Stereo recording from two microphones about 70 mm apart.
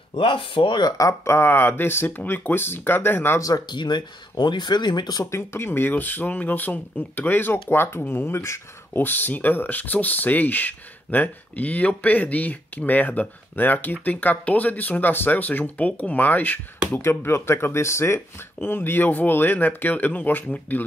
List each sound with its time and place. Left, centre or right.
0.1 s speech: left
0.9 s speech: left
1.3 s speech: left
3.3 s speech: left
3.6 s speech: left
5.2 s speech: left
17.0 s speech: left
18.6 s speech: left